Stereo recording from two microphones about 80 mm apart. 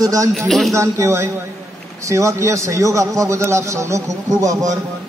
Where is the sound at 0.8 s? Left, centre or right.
Right.